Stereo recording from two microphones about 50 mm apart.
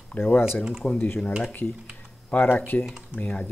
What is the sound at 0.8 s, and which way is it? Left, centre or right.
Speech, centre.